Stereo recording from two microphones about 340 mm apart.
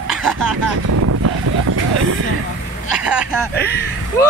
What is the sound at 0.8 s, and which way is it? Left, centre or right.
Vehicle, right.